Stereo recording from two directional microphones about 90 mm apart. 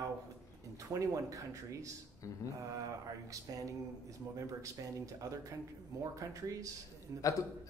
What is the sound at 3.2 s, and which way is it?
A man's voice, 40° right (ahead or behind).